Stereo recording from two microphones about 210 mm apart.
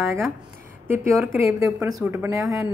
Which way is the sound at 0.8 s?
10° right (ahead or behind).